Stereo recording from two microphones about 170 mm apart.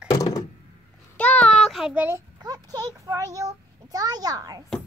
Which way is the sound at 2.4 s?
25° right (ahead or behind).